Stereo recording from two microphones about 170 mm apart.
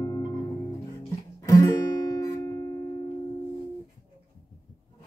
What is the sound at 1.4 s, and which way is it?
Guitar, 20° left (ahead or behind).